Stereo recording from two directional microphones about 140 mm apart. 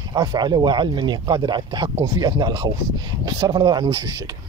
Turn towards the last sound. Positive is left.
turn(degrees=-30)  # may be behind; listen again after turning